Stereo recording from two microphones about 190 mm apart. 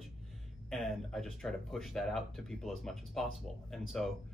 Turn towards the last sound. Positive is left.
turn(degrees=0)  # may be behind; listen again after turning